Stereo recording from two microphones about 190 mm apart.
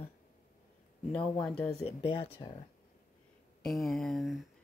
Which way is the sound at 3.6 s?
Centre (ahead or behind).